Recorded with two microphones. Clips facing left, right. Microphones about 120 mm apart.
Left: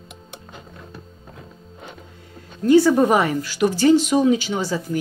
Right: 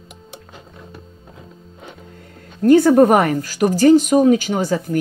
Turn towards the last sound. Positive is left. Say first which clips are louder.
# right 4 dB
turn(degrees=-50)  # may be behind; listen again after turning